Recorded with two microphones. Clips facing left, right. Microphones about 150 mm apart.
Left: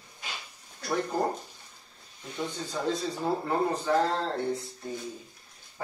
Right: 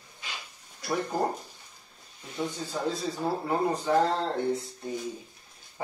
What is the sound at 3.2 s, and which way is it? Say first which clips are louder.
Speech: right 1 dB; 10° right (ahead or behind).